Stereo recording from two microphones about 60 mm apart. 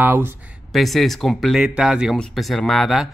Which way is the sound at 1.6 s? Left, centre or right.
Centre.